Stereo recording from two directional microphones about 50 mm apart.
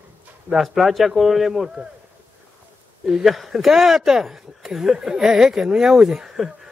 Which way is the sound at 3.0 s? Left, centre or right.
Centre.